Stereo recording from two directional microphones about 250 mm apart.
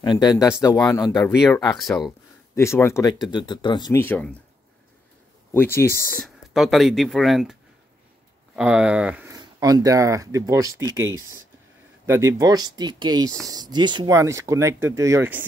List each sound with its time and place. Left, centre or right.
0.0 s speech: centre
2.5 s speech: centre
5.5 s speech: centre
8.5 s speech: centre
10.9 s speech: right
12.1 s speech: centre